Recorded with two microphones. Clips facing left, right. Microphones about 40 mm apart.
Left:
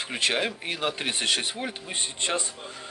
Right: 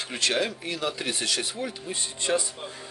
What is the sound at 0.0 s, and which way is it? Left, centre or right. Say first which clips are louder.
Speech: even; left.